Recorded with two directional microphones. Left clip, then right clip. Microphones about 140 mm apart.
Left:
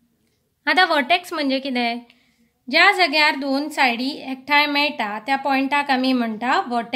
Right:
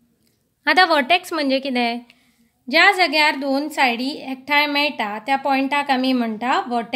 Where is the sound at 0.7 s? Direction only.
25° right (ahead or behind).